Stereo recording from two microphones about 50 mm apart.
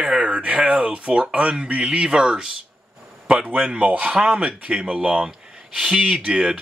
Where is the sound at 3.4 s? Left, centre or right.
Right.